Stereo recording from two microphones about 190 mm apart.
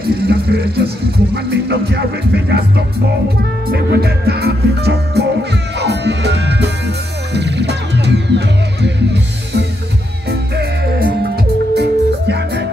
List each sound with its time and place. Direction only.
0.3 s music: 55° right (ahead or behind)
3.7 s music: 55° right (ahead or behind)
11.7 s music: 60° right (ahead or behind)